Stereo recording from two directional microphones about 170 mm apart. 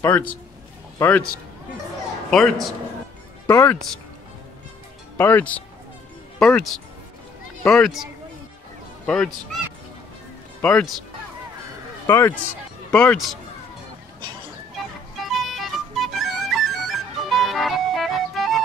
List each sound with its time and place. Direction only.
0.0 s a man's voice: 10° left (ahead or behind)
2.3 s speech: centre (ahead or behind)
3.4 s speech: 15° left (ahead or behind)
5.1 s speech: 10° left (ahead or behind)
10.6 s speech: 10° left (ahead or behind)
12.1 s speech: 10° left (ahead or behind)
15.1 s music: centre (ahead or behind)